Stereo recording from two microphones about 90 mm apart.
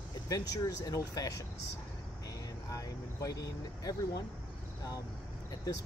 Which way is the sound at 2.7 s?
40° left (ahead or behind).